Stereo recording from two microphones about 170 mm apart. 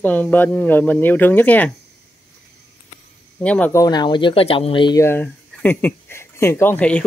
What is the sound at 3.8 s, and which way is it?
Speech, 25° left (ahead or behind).